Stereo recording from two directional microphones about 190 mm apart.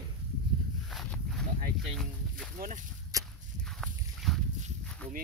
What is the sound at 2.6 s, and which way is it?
Speech, 45° right (ahead or behind).